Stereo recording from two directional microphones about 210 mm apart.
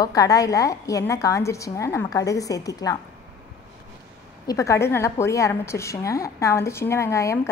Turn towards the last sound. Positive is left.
turn(degrees=15)  # may be behind; listen again after turning